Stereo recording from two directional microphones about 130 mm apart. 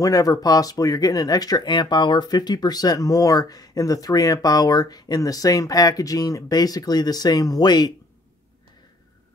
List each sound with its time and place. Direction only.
0.0 s speech: 30° left (ahead or behind)